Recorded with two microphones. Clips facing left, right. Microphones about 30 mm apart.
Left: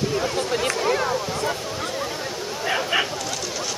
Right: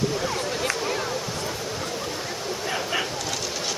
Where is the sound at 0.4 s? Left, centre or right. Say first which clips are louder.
Left 3 dB; left.